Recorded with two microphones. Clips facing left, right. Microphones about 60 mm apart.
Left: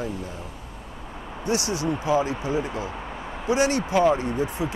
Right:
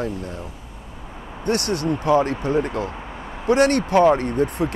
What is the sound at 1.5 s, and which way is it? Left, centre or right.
Speech, right.